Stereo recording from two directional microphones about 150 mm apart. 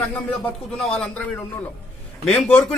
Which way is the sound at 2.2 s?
10° left (ahead or behind).